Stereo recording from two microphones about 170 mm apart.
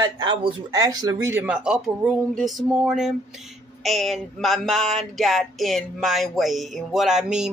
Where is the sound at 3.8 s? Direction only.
Centre (ahead or behind).